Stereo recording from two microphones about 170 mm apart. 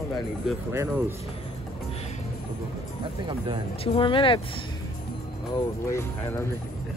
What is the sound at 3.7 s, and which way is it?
Speech, 35° left (ahead or behind).